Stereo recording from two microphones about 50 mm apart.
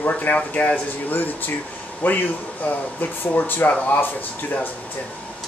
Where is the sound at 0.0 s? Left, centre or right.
Left.